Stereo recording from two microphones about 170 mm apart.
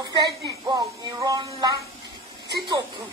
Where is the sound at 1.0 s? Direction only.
20° right (ahead or behind).